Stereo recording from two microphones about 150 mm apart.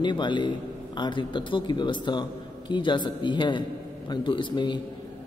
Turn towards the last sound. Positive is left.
turn(degrees=30)  # may be behind; listen again after turning